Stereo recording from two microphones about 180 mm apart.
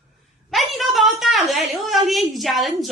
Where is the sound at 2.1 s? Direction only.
Centre (ahead or behind).